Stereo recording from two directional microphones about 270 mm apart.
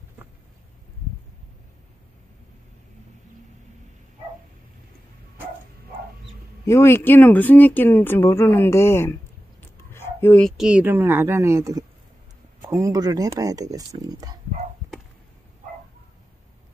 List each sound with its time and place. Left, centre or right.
6.6 s speech: centre